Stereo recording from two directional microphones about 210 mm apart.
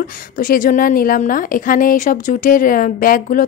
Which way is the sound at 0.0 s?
45° left (ahead or behind).